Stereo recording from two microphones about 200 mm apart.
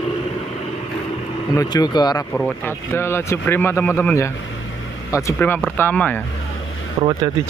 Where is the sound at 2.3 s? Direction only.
10° left (ahead or behind).